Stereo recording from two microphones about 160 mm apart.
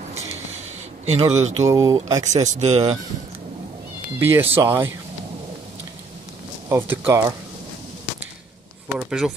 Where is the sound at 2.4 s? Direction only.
45° right (ahead or behind).